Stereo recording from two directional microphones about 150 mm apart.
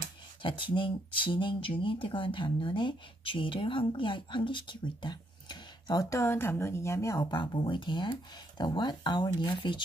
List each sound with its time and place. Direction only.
0.4 s speech: 35° left (ahead or behind)